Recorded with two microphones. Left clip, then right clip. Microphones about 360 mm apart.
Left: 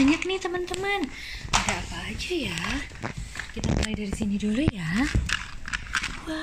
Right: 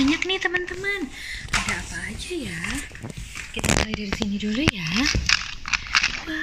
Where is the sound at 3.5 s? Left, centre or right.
Right.